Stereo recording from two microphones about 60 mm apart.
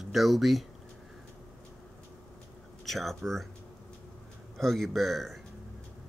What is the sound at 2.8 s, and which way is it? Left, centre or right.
Speech, centre.